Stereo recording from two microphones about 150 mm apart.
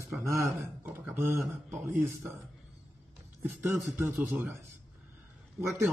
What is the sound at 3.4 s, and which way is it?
Speech, 10° right (ahead or behind).